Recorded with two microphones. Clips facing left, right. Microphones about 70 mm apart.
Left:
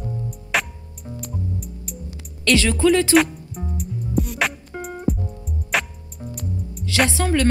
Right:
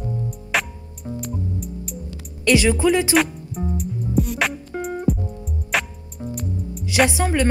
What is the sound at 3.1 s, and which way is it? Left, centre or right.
Music, centre.